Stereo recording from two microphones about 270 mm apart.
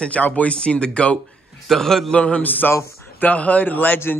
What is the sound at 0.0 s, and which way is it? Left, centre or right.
A man's voice, centre.